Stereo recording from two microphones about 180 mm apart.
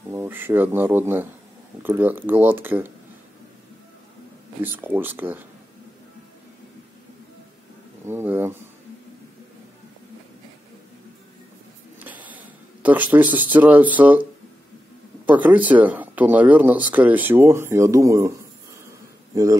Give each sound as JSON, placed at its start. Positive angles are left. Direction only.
{"t": 0.1, "sound": "speech", "side_deg": -10}
{"t": 4.6, "sound": "speech", "side_deg": -10}
{"t": 8.0, "sound": "speech", "side_deg": -15}
{"t": 12.0, "sound": "speech", "side_deg": -10}
{"t": 15.2, "sound": "speech", "side_deg": -10}
{"t": 18.9, "sound": "a sound", "side_deg": -20}